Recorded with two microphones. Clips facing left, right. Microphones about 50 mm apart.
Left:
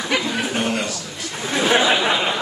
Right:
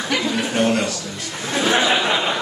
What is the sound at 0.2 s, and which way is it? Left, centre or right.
Speech, centre.